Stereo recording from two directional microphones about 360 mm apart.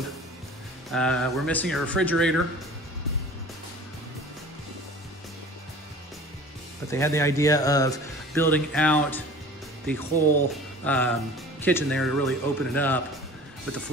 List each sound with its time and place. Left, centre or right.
0.9 s speech: centre
6.9 s speech: centre